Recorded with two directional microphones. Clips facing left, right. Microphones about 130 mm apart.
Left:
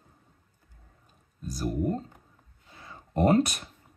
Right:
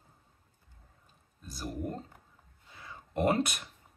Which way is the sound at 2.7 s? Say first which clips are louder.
Left 4 dB; 25° left (ahead or behind).